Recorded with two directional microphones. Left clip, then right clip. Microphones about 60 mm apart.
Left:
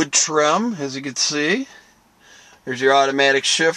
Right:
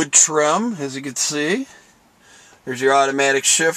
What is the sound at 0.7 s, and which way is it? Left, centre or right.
Speech, centre.